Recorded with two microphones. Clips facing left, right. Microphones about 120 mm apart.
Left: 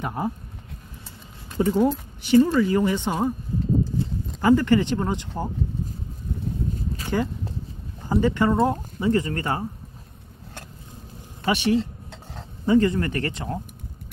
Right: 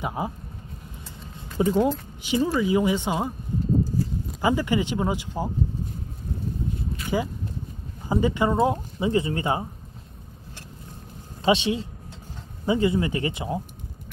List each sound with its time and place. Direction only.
0.0 s speech: 10° right (ahead or behind)
1.6 s speech: 15° right (ahead or behind)
4.4 s speech: 15° right (ahead or behind)
8.1 s speech: 15° right (ahead or behind)
11.4 s speech: 20° right (ahead or behind)